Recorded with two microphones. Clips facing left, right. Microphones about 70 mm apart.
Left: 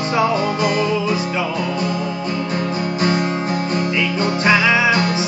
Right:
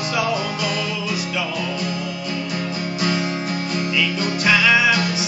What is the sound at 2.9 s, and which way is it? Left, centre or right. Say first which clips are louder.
Music: left 3 dB; left.